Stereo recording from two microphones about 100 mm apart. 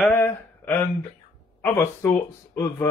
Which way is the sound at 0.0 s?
20° left (ahead or behind).